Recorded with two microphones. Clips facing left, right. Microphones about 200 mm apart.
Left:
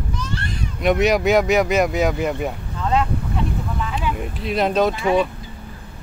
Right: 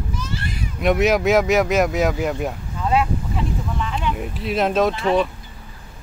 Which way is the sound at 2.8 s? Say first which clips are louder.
Right 1 dB; 5° right (ahead or behind).